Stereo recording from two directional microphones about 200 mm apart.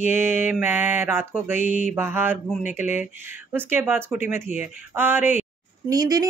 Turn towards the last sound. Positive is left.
turn(degrees=-20)  # may be behind; listen again after turning